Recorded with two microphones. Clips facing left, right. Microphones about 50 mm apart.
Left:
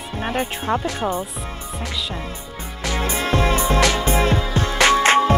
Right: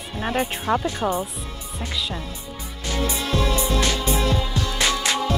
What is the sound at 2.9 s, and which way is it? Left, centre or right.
Music, left.